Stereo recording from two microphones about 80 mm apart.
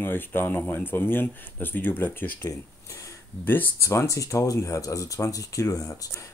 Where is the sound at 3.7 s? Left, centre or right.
Left.